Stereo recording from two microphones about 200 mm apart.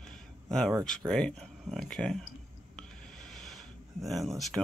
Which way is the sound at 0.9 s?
5° left (ahead or behind).